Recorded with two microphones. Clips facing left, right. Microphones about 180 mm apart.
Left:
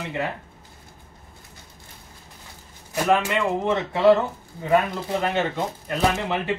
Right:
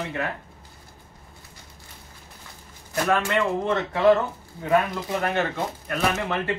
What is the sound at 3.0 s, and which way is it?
Speech, 15° left (ahead or behind).